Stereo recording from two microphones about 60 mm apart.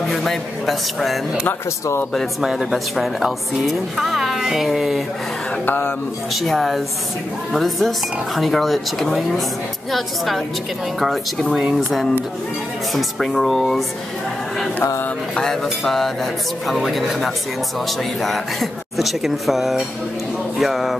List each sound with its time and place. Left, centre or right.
0.0 s a woman's voice: centre
2.4 s a woman's voice: centre
5.7 s a man's voice: left
6.3 s a woman's voice: centre
15.3 s a woman's voice: centre